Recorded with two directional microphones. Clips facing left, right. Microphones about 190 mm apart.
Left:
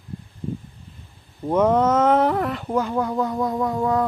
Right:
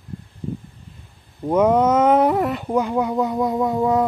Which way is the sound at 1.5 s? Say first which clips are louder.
Right 2 dB; 10° right (ahead or behind).